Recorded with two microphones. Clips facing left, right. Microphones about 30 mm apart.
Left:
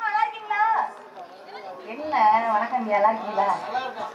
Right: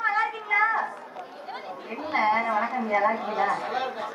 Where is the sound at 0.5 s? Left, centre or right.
Centre.